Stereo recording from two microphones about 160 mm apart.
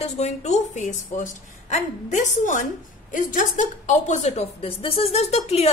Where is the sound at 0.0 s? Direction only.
45° left (ahead or behind).